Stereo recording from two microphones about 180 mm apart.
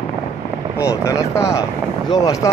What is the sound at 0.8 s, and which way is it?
Vehicle, 15° left (ahead or behind).